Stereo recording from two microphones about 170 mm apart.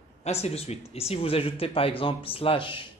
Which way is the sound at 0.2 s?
40° left (ahead or behind).